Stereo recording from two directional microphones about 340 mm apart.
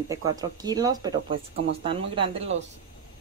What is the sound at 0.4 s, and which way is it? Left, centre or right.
Speech, centre.